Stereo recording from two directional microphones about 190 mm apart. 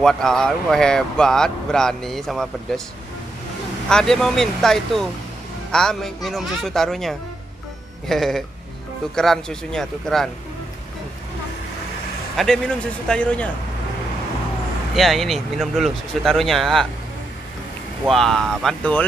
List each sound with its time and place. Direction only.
0.0 s speech: 5° left (ahead or behind)
3.9 s speech: centre (ahead or behind)
12.4 s speech: 5° left (ahead or behind)
15.0 s speech: centre (ahead or behind)
18.0 s speech: centre (ahead or behind)